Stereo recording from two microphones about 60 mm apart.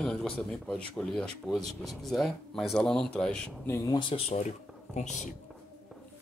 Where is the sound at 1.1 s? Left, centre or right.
Centre.